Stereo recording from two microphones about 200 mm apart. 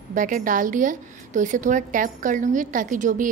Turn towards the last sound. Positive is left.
turn(degrees=-40)  # may be behind; listen again after turning